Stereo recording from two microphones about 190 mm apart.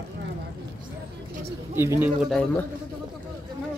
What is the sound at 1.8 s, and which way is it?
Speech, 10° right (ahead or behind).